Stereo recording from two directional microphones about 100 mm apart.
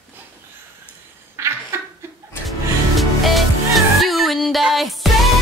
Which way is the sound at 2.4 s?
Centre (ahead or behind).